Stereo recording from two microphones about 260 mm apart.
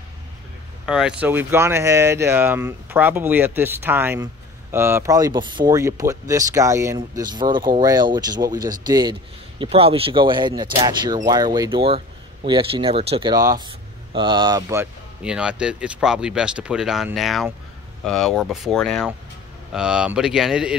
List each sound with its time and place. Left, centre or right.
0.8 s speech: centre